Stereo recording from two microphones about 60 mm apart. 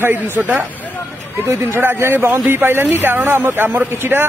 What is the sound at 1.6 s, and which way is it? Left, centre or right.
A man's voice, right.